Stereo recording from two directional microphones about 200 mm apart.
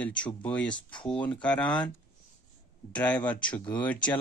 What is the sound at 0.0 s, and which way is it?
Speech, 5° left (ahead or behind).